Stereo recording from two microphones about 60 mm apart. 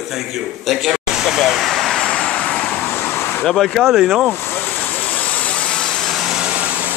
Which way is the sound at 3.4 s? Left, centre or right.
Centre.